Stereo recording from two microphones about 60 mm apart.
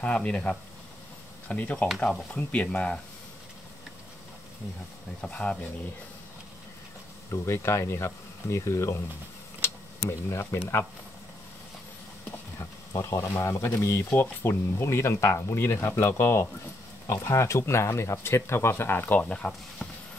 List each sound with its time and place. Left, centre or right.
0.0 s speech: centre
5.2 s speech: centre
7.4 s speech: left
12.5 s speech: left
17.1 s speech: left
19.2 s speech: centre